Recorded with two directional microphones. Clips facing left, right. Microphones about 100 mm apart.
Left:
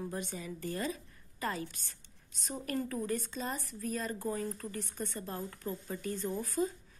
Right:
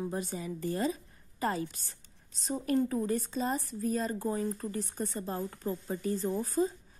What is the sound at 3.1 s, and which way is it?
Speech, 35° right (ahead or behind).